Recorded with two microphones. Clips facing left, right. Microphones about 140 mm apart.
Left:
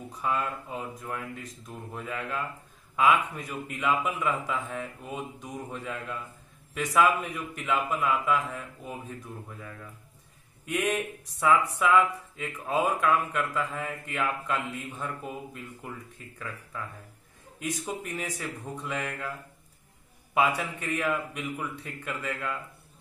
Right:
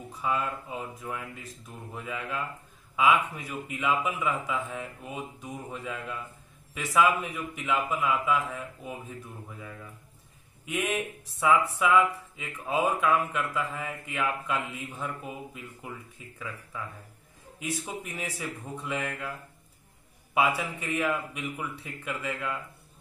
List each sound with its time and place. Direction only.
0.2 s speech: 5° right (ahead or behind)
10.6 s a man's voice: 5° right (ahead or behind)
20.3 s a man's voice: 10° right (ahead or behind)